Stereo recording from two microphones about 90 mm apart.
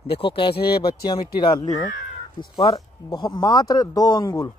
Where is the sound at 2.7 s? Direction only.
50° left (ahead or behind).